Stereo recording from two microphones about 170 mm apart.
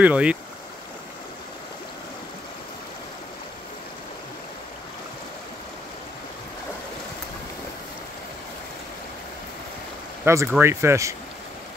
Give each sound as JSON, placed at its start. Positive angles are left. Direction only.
{"t": 0.0, "sound": "speech", "side_deg": -5}
{"t": 10.2, "sound": "speech", "side_deg": -15}